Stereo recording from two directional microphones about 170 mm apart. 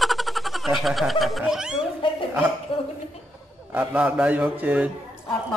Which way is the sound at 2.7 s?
35° left (ahead or behind).